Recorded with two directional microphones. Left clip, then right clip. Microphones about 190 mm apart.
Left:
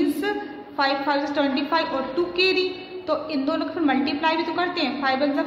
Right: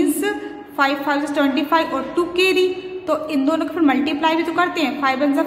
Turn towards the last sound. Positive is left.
turn(degrees=-20)  # may be behind; listen again after turning